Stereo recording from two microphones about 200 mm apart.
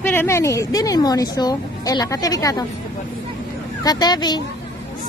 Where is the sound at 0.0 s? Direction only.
10° left (ahead or behind).